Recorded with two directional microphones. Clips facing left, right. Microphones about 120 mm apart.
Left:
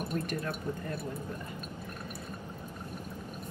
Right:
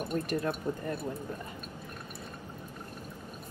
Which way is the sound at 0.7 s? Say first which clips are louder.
Right 2 dB; 25° right (ahead or behind).